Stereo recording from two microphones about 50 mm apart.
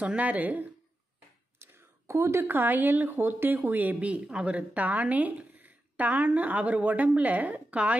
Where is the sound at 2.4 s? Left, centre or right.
Right.